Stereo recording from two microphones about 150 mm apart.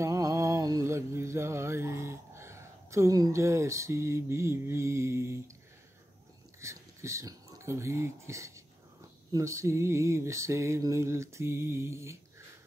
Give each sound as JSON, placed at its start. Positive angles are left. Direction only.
{"t": 0.0, "sound": "mantra", "side_deg": -20}
{"t": 6.6, "sound": "speech", "side_deg": -20}
{"t": 9.3, "sound": "mantra", "side_deg": -20}